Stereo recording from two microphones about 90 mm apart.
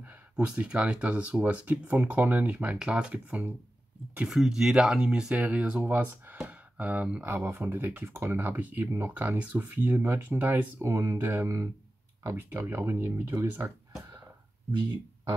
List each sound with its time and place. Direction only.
0.0 s speech: 15° right (ahead or behind)